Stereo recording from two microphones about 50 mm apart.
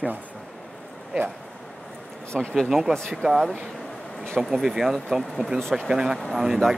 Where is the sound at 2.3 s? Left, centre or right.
Centre.